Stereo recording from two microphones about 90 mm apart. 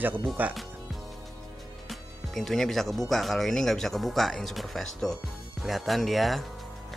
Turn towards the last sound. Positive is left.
turn(degrees=0)  # may be behind; listen again after turning